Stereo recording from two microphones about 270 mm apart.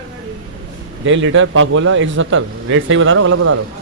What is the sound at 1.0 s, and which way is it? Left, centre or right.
A man's voice, right.